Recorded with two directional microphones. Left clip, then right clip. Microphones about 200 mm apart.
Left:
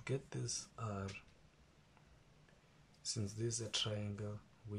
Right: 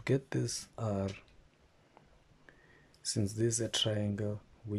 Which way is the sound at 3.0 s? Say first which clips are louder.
Right 10 dB; 35° right (ahead or behind).